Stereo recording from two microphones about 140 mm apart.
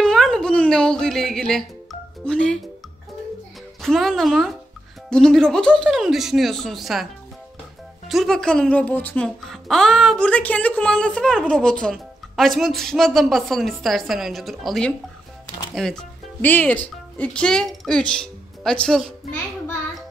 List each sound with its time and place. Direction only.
0.0 s music: 5° left (ahead or behind)
3.8 s speech: centre (ahead or behind)
8.1 s speech: centre (ahead or behind)